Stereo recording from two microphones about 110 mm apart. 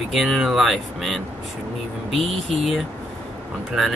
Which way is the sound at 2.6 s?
Centre (ahead or behind).